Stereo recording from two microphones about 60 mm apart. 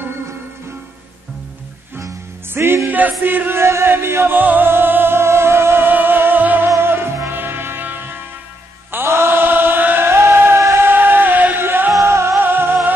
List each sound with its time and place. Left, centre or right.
2.5 s music: right
2.9 s music: right
6.8 s music: right
8.9 s chant: right
10.9 s music: right
12.0 s music: right